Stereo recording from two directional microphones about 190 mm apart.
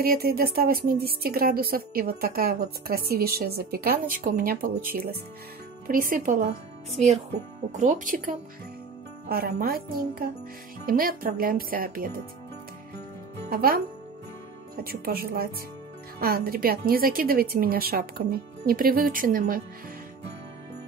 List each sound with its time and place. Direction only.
0.0 s speech: 50° right (ahead or behind)
13.5 s speech: 50° right (ahead or behind)
14.8 s speech: 55° right (ahead or behind)